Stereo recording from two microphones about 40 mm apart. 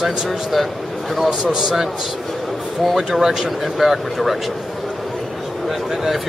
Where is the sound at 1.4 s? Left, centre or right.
Centre.